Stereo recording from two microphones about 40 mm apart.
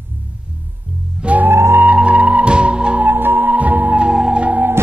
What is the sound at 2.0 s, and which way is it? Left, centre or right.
Music, right.